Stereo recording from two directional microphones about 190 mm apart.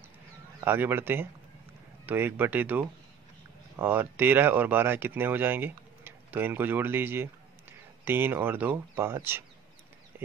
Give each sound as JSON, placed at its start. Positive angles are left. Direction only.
{"t": 0.7, "sound": "speech", "side_deg": -10}